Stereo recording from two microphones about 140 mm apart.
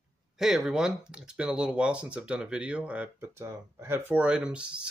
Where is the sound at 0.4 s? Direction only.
5° right (ahead or behind).